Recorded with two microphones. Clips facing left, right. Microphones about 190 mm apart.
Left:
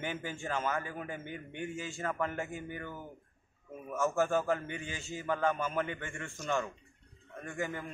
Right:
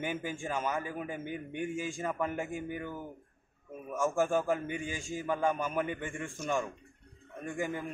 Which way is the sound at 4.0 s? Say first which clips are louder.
Right 1 dB; 15° right (ahead or behind).